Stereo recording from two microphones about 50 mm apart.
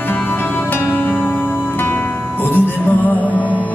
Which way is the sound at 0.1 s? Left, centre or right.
Left.